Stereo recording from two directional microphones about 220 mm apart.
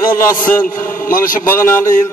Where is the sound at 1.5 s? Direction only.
10° left (ahead or behind).